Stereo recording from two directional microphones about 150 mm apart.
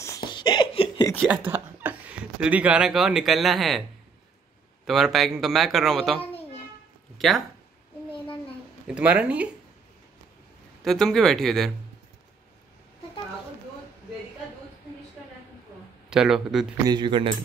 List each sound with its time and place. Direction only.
0.0 s laughter: 25° left (ahead or behind)
1.2 s speech: 15° right (ahead or behind)
4.8 s speech: centre (ahead or behind)
8.8 s speech: 10° right (ahead or behind)
10.8 s speech: centre (ahead or behind)
16.1 s speech: 5° right (ahead or behind)
16.8 s speech: 30° right (ahead or behind)